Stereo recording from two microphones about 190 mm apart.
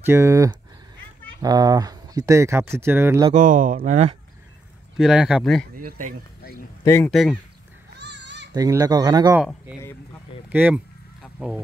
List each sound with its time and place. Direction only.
0.0 s speech: 15° right (ahead or behind)
3.3 s speech: 40° right (ahead or behind)
4.9 s speech: 5° right (ahead or behind)
6.8 s speech: 15° left (ahead or behind)
7.1 s speech: centre (ahead or behind)
8.0 s children playing: 65° right (ahead or behind)
8.5 s speech: 20° right (ahead or behind)
10.5 s speech: 10° right (ahead or behind)